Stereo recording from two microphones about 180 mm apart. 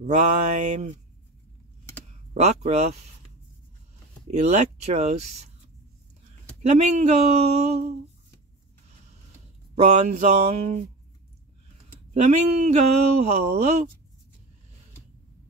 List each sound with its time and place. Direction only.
0.0 s mantra: 45° right (ahead or behind)
2.3 s speech: 40° right (ahead or behind)
4.3 s speech: 40° right (ahead or behind)
6.6 s speech: 40° right (ahead or behind)
9.8 s speech: 40° right (ahead or behind)
12.1 s speech: 40° right (ahead or behind)